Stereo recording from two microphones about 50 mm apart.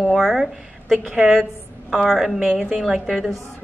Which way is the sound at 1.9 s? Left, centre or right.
Centre.